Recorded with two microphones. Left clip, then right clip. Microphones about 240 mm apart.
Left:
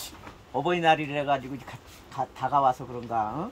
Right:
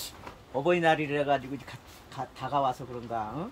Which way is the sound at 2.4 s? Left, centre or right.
Centre.